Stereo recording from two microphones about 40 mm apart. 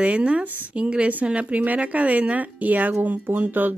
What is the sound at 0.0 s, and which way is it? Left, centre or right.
A woman's voice, right.